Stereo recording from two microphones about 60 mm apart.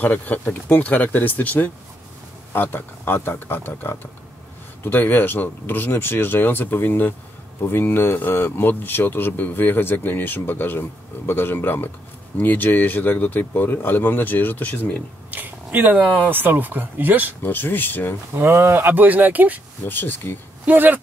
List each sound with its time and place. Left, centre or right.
0.0 s speech: left
15.3 s speech: right
17.4 s speech: left
18.3 s speech: right
19.9 s speech: left
20.6 s speech: right